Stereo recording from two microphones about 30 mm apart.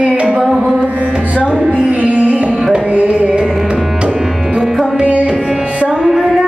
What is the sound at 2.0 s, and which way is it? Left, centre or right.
Music, right.